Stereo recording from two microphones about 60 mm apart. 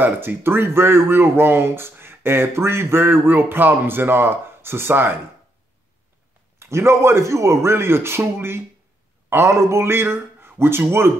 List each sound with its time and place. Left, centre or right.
0.0 s speech: right
6.6 s a man's voice: right
9.3 s a man's voice: right